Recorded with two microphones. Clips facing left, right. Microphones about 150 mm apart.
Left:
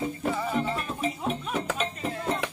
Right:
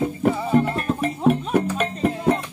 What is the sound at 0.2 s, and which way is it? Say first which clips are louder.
Music: right 10 dB; 60° right (ahead or behind).